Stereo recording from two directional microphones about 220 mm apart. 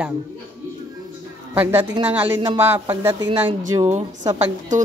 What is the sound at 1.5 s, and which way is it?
Speech, 10° right (ahead or behind).